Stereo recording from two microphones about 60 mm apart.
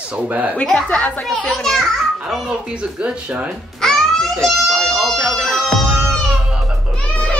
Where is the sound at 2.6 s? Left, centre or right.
Centre.